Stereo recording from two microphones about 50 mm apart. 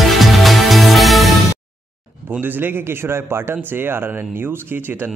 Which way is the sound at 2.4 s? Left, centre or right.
Right.